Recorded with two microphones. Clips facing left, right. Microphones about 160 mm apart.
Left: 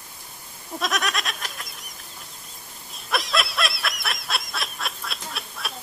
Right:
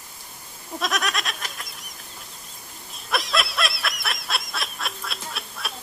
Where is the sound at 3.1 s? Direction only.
Centre (ahead or behind).